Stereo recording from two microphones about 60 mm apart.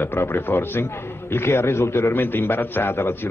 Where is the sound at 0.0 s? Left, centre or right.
Left.